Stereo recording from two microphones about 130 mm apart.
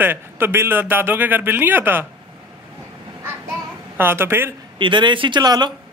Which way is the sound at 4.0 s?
20° right (ahead or behind).